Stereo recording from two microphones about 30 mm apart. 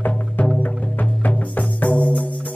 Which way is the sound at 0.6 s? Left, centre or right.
Left.